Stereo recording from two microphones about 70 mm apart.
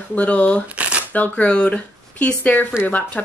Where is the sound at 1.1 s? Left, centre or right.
Centre.